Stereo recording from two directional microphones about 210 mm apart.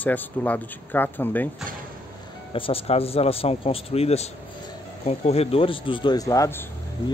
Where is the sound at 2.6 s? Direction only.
25° left (ahead or behind).